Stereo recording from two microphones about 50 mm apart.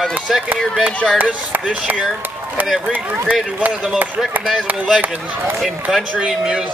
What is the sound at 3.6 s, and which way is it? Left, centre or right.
Speech, right.